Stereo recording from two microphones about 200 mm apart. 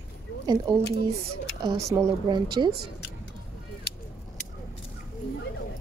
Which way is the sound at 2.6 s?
25° right (ahead or behind).